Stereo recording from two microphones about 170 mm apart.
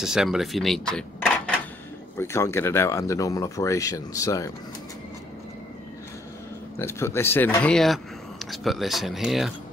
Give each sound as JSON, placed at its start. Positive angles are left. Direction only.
{"t": 0.0, "sound": "speech", "side_deg": -5}
{"t": 2.1, "sound": "speech", "side_deg": 15}
{"t": 6.8, "sound": "speech", "side_deg": 15}